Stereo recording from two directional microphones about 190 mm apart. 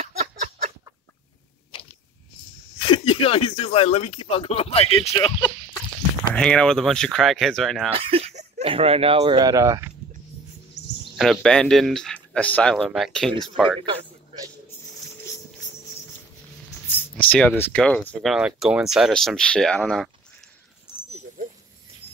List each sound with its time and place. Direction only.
0.0 s a sound: 35° right (ahead or behind)
2.9 s speech: 30° left (ahead or behind)
6.3 s speech: 5° left (ahead or behind)
7.9 s speech: 30° right (ahead or behind)
9.4 s speech: 20° right (ahead or behind)
11.1 s speech: 5° left (ahead or behind)
16.8 s a sound: 10° left (ahead or behind)
17.6 s speech: 10° left (ahead or behind)
20.9 s dog: 5° right (ahead or behind)